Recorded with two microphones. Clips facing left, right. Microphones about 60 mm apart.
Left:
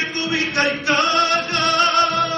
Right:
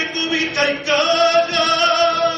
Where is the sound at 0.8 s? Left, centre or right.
Left.